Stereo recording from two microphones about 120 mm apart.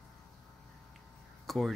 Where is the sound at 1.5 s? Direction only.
Centre (ahead or behind).